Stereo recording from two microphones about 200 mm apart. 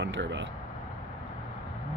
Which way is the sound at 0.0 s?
65° right (ahead or behind).